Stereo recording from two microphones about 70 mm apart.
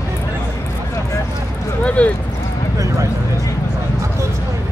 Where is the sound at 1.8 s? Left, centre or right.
Centre.